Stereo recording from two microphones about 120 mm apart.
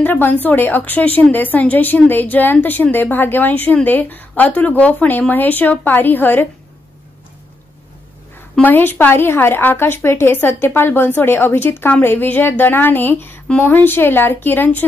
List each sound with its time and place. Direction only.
0.0 s a woman's voice: 15° left (ahead or behind)
8.5 s a woman's voice: 15° left (ahead or behind)